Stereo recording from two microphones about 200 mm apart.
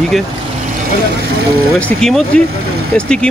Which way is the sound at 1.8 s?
Centre (ahead or behind).